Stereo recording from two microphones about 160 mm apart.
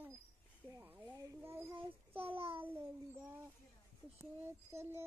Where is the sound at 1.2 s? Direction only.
15° right (ahead or behind).